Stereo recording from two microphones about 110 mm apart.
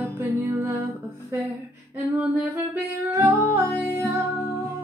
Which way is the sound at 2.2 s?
15° right (ahead or behind).